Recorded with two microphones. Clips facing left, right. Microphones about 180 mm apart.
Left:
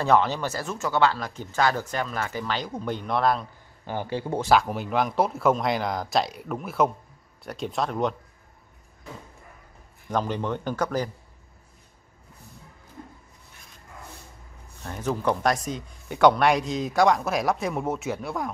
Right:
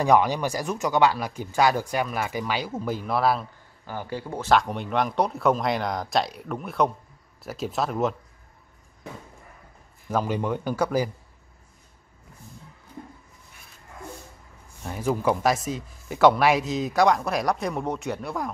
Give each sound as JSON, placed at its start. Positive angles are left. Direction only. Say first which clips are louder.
{"t": 0.0, "sound": "speech", "louder": "right 2 dB", "side_deg": -10}
{"t": 3.8, "sound": "speech", "louder": "left 3 dB", "side_deg": 25}
{"t": 4.5, "sound": "speech", "louder": "right 1 dB", "side_deg": 0}
{"t": 10.0, "sound": "speech", "louder": "right 1 dB", "side_deg": -5}
{"t": 14.8, "sound": "speech", "louder": "right 2 dB", "side_deg": -10}